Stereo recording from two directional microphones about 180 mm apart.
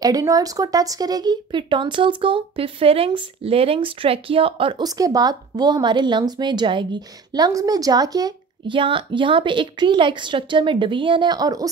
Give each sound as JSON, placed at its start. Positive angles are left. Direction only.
{"t": 0.0, "sound": "speech", "side_deg": -20}